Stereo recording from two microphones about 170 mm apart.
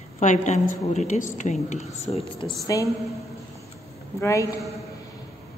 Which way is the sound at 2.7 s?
20° left (ahead or behind).